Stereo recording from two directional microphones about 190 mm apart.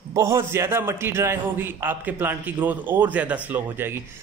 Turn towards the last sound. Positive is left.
turn(degrees=-10)  # may be behind; listen again after turning